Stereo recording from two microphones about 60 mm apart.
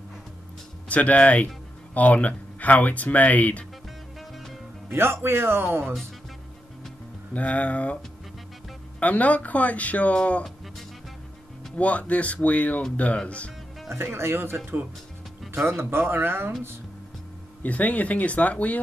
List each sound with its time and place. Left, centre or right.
0.8 s speech: left
4.9 s speech: right
7.3 s speech: left
9.0 s speech: left
11.7 s speech: left
13.8 s speech: right
17.6 s speech: left